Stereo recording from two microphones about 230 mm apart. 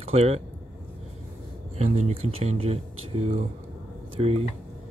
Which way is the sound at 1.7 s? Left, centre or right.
Right.